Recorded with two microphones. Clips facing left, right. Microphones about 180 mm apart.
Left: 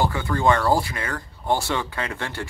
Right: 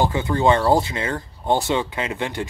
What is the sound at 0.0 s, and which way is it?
Speech, 20° right (ahead or behind).